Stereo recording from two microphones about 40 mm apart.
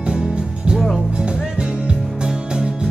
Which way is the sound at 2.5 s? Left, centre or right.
Right.